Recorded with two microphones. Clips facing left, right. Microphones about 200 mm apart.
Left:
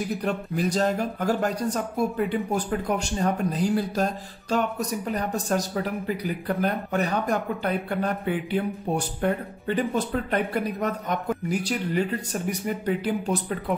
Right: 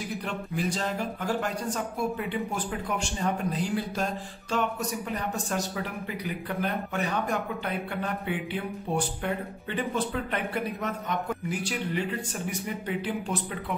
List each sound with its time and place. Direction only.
0.2 s speech: 40° left (ahead or behind)